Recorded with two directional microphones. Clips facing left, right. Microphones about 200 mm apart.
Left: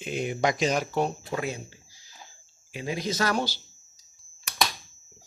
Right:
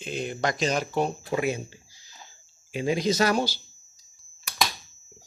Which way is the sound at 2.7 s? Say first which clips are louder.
Right 6 dB; 25° right (ahead or behind).